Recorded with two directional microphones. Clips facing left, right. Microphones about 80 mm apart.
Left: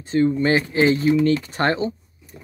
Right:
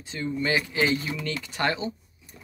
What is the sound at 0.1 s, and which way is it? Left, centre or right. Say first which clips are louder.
Speech: left 9 dB; left.